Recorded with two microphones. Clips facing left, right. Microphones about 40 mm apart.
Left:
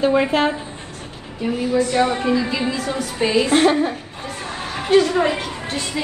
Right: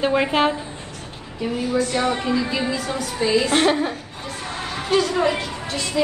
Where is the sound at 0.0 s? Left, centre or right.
Centre.